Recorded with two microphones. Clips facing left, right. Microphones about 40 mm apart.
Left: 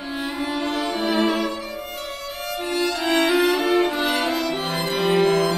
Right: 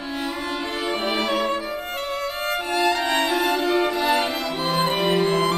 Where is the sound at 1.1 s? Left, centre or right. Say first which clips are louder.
Left 4 dB; left.